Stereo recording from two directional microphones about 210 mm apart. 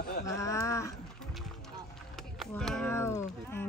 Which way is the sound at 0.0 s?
45° left (ahead or behind).